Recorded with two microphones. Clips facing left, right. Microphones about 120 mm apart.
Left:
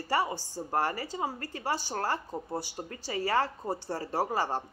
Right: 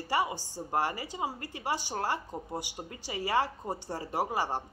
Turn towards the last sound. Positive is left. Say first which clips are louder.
# left 1 dB
turn(degrees=-15)  # may be behind; listen again after turning